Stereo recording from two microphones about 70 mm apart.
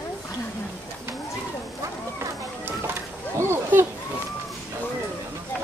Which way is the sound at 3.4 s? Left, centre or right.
Right.